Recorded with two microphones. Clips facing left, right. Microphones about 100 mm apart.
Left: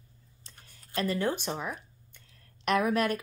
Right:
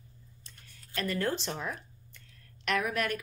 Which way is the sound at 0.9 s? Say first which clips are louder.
Left 2 dB; 20° left (ahead or behind).